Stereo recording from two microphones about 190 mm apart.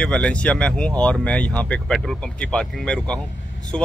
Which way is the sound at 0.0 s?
5° left (ahead or behind).